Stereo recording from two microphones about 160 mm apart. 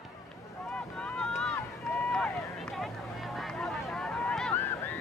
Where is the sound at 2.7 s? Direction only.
Centre (ahead or behind).